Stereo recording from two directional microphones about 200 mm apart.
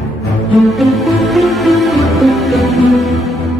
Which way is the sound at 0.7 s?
Centre (ahead or behind).